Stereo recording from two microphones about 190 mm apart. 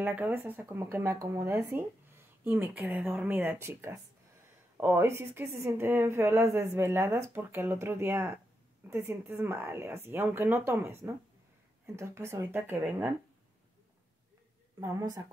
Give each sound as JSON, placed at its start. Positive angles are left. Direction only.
{"t": 0.0, "sound": "a woman's voice", "side_deg": -10}
{"t": 14.8, "sound": "a woman's voice", "side_deg": -20}